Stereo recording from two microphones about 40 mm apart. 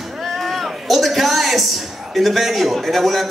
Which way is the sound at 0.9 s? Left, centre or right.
Centre.